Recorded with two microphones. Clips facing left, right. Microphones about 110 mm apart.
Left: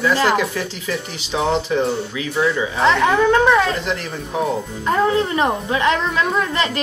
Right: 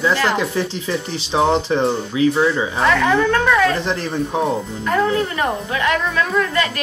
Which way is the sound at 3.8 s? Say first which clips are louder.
Right 2 dB; 30° right (ahead or behind).